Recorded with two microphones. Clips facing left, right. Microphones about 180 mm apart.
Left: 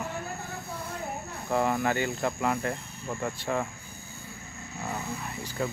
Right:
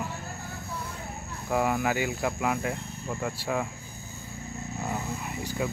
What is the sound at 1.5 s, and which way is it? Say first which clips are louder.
Speech: even; 5° right (ahead or behind).